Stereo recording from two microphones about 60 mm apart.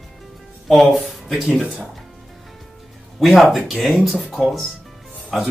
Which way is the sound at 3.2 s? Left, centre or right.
Centre.